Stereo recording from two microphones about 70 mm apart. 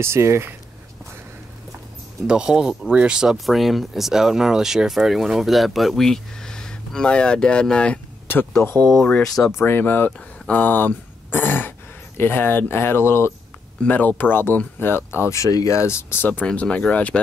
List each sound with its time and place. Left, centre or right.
0.0 s speech: right
2.2 s speech: centre
8.3 s a sound: left
9.5 s speech: left
13.8 s speech: left
16.3 s speech: centre